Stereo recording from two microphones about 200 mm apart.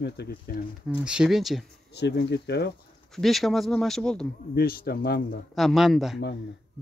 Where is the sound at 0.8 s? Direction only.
5° right (ahead or behind).